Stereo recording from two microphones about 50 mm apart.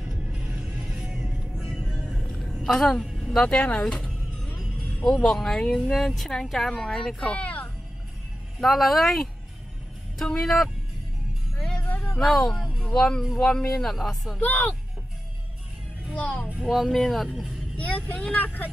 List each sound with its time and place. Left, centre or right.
0.0 s music: centre
1.2 s music: centre
2.4 s a sound: centre
2.8 s a woman's voice: centre
3.4 s speech: left
5.0 s speech: centre
7.2 s speech: left
8.5 s speech: centre
12.1 s speech: centre
13.7 s speech: centre
14.4 s speech: left
16.2 s speech: centre
16.6 s speech: centre
17.7 s speech: left